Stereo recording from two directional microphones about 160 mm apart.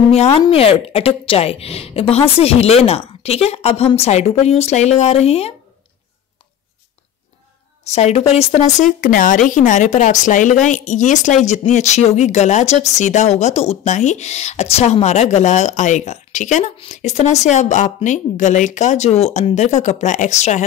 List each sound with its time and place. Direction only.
0.1 s a woman's voice: 40° left (ahead or behind)
7.8 s speech: 45° left (ahead or behind)